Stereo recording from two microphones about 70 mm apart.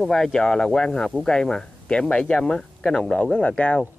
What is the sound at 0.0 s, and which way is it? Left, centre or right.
Speech, centre.